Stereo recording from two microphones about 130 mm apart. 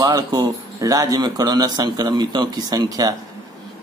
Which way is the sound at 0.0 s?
25° right (ahead or behind).